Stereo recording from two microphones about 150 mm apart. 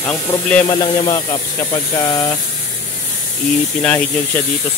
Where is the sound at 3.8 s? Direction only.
5° left (ahead or behind).